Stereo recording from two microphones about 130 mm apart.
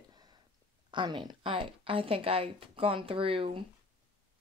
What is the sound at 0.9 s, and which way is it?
A woman's voice, 35° right (ahead or behind).